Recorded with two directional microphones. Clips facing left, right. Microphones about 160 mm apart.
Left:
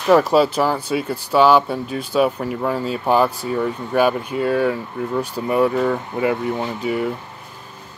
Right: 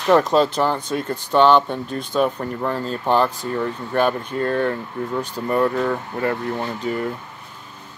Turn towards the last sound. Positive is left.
turn(degrees=10)  # may be behind; listen again after turning